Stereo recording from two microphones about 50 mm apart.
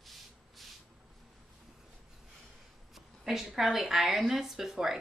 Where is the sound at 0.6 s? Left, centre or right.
Centre.